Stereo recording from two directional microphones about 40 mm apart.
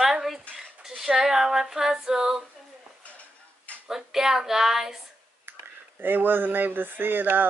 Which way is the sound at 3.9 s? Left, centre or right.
Centre.